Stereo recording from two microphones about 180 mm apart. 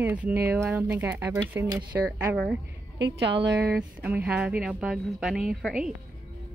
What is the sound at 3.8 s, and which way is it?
Speech, 10° right (ahead or behind).